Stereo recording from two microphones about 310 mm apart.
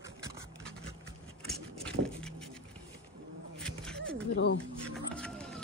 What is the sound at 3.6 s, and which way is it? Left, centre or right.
Cat, centre.